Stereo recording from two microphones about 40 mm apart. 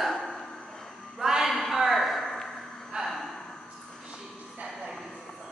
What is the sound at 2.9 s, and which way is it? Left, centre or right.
Gasp, centre.